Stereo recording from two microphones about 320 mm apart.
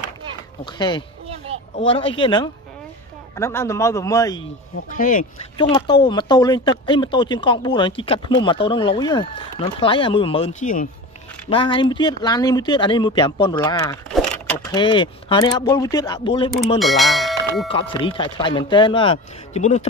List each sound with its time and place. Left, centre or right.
0.7 s speech: centre
1.5 s a sound: centre
1.9 s speech: centre
4.9 s speech: left
5.6 s speech: centre
16.8 s speech: centre
17.6 s speech: centre